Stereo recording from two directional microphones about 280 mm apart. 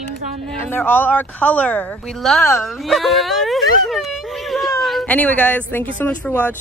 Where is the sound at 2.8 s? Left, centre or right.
Centre.